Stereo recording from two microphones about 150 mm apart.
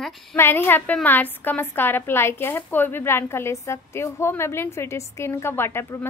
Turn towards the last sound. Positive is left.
turn(degrees=15)  # may be behind; listen again after turning